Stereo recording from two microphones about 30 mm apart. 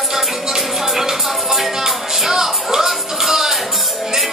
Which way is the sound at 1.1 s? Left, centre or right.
Centre.